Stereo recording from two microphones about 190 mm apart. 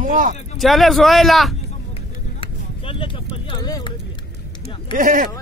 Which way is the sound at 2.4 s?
30° left (ahead or behind).